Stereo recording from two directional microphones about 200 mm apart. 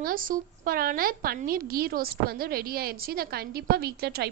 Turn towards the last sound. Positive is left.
turn(degrees=-50)  # may be behind; listen again after turning